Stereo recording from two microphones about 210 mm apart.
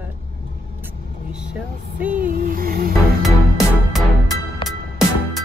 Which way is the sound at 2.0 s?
40° right (ahead or behind).